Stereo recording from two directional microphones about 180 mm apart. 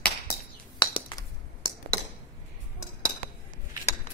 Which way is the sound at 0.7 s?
25° left (ahead or behind).